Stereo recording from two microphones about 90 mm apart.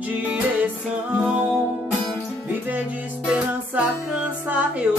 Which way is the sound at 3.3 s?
15° right (ahead or behind).